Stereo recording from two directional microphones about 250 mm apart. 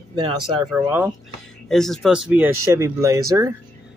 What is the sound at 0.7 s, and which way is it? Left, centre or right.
Speech, centre.